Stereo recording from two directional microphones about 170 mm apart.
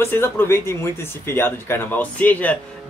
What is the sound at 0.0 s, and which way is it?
Speech, 15° left (ahead or behind).